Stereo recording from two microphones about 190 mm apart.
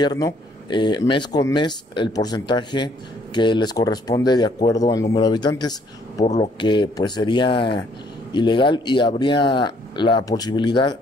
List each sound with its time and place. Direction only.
0.0 s speech: 20° left (ahead or behind)
6.2 s speech: 35° left (ahead or behind)
6.6 s speech: 25° left (ahead or behind)